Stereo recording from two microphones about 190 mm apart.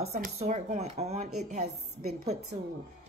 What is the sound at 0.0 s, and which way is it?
Speech, 35° right (ahead or behind).